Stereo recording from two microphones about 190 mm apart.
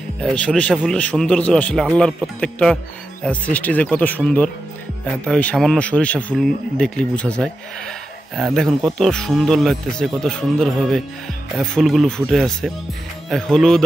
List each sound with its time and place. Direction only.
0.2 s speech: 5° left (ahead or behind)